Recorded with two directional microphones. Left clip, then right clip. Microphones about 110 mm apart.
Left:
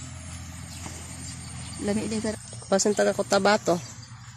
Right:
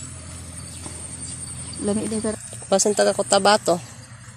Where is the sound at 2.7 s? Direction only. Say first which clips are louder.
Right 4 dB; 20° left (ahead or behind).